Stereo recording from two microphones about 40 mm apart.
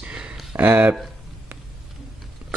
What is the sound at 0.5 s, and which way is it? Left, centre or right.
Speech, right.